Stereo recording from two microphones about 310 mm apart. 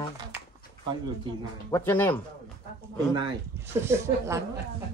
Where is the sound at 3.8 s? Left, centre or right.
Centre.